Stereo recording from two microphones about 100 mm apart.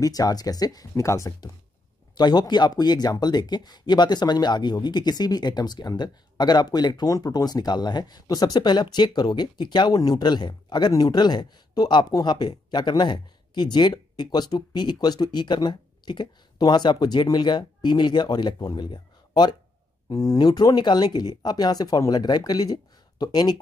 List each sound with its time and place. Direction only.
0.0 s speech: 40° left (ahead or behind)
2.1 s speech: 45° left (ahead or behind)